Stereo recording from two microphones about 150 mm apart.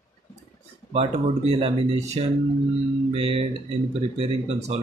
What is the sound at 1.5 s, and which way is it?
Speech, 45° right (ahead or behind).